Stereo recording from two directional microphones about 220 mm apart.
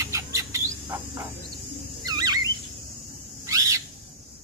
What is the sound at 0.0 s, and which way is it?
Bird, 15° right (ahead or behind).